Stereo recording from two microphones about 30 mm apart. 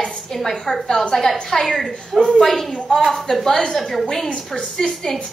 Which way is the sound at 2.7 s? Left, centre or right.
Centre.